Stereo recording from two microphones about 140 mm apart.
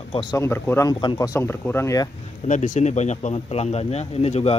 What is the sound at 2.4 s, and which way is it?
Speech, 60° left (ahead or behind).